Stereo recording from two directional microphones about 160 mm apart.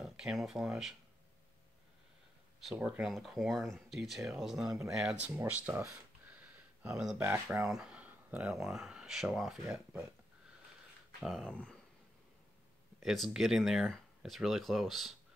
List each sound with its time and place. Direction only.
0.0 s speech: centre (ahead or behind)
2.6 s speech: 5° right (ahead or behind)
5.4 s speech: 15° right (ahead or behind)
6.2 s a sound: 10° right (ahead or behind)
7.2 s speech: 15° right (ahead or behind)
7.6 s speech: 5° right (ahead or behind)
11.2 s speech: centre (ahead or behind)
13.0 s speech: centre (ahead or behind)